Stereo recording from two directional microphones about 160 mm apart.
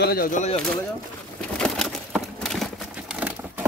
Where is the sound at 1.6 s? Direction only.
Centre (ahead or behind).